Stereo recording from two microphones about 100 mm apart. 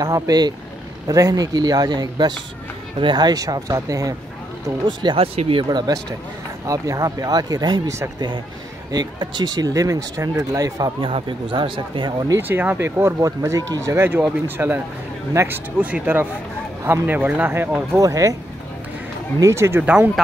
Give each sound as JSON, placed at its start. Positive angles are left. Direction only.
{"t": 0.0, "sound": "speech", "side_deg": -40}
{"t": 4.8, "sound": "speech", "side_deg": -60}
{"t": 5.6, "sound": "speech", "side_deg": -45}
{"t": 6.6, "sound": "speech", "side_deg": -35}
{"t": 8.9, "sound": "speech", "side_deg": -45}
{"t": 11.0, "sound": "speech", "side_deg": -60}
{"t": 12.4, "sound": "speech", "side_deg": -20}
{"t": 17.9, "sound": "speech", "side_deg": -35}
{"t": 19.4, "sound": "speech", "side_deg": -25}
{"t": 19.8, "sound": "speech", "side_deg": -15}